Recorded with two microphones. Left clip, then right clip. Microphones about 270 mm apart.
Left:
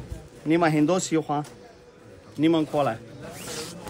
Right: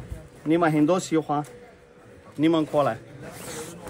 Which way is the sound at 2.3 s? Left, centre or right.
Centre.